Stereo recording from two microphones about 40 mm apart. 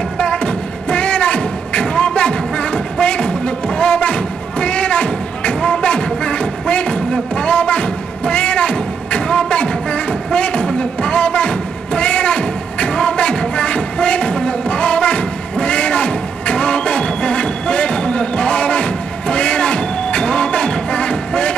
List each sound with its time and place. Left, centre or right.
0.2 s music: left